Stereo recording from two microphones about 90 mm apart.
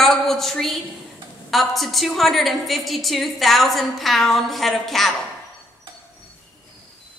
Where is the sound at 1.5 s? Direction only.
Centre (ahead or behind).